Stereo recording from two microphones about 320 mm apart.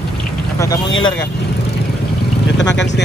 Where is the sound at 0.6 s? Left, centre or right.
Centre.